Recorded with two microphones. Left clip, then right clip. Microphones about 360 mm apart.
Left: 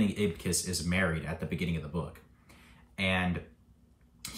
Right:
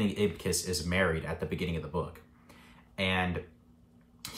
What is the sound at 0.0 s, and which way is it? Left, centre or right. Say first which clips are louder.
Speech: right 1 dB; centre.